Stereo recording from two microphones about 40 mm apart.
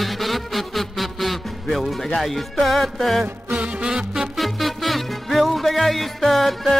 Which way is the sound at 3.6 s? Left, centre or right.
Right.